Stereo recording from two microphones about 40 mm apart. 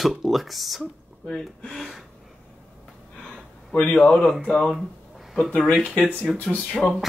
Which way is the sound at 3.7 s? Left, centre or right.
Left.